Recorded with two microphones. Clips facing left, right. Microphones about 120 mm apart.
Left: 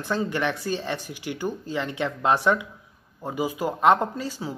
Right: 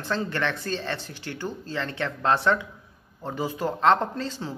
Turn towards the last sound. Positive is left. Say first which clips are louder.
# left 1 dB
turn(degrees=10)  # may be behind; listen again after turning